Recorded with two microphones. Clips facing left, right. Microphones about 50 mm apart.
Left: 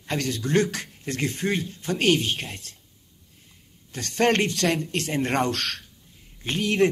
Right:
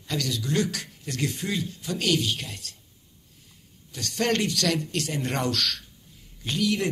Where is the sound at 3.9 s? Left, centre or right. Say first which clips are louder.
Left 4 dB; left.